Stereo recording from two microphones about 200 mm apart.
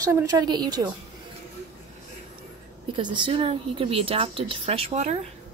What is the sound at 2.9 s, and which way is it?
Speech, 25° right (ahead or behind).